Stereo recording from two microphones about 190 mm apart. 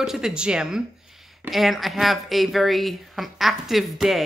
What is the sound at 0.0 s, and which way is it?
Speech, 5° right (ahead or behind).